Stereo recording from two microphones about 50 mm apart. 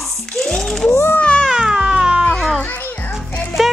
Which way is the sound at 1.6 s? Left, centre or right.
Centre.